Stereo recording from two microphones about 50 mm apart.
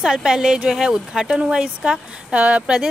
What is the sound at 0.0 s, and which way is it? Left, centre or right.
Speech, centre.